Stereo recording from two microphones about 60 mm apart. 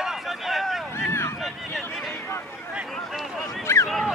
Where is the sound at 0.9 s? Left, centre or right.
Left.